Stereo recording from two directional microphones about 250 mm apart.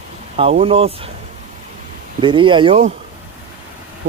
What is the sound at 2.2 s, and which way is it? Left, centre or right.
Speech, centre.